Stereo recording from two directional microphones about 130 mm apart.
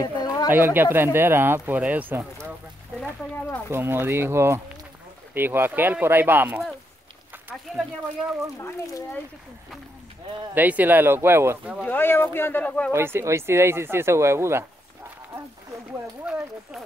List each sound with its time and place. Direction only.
0.0 s a sound: 30° left (ahead or behind)
0.5 s speech: 15° right (ahead or behind)
3.7 s speech: 20° right (ahead or behind)
7.7 s speech: centre (ahead or behind)
8.5 s speech: 25° left (ahead or behind)
10.5 s speech: 15° right (ahead or behind)
11.8 s speech: 15° left (ahead or behind)
12.9 s speech: 20° right (ahead or behind)